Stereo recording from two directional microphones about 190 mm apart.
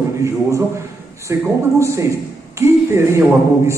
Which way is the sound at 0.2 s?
15° right (ahead or behind).